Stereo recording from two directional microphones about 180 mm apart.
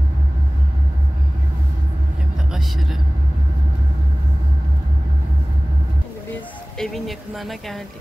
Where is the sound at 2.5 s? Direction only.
Centre (ahead or behind).